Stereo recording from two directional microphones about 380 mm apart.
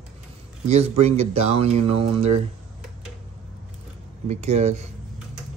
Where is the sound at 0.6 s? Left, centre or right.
Centre.